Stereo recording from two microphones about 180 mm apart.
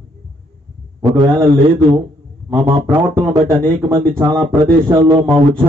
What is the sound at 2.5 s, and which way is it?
Speech, 15° right (ahead or behind).